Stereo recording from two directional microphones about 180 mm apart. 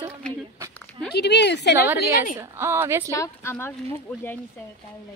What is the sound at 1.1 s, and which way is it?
Speech, 70° left (ahead or behind).